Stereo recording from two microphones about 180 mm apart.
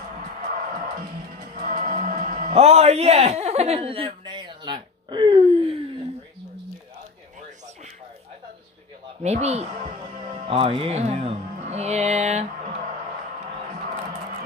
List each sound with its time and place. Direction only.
1.7 s music: 50° right (ahead or behind); by 5.8 s 25° right (ahead or behind)
9.2 s music: 35° right (ahead or behind)
10.3 s speech: 30° right (ahead or behind)